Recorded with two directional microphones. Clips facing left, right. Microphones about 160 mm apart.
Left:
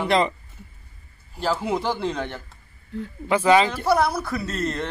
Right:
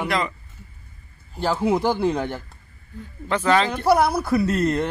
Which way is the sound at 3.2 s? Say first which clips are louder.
Left 2 dB; 10° left (ahead or behind).